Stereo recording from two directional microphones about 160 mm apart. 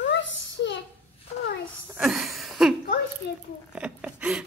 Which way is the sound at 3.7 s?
10° right (ahead or behind).